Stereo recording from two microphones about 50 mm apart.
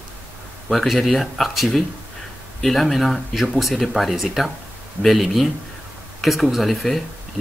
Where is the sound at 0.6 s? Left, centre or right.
Centre.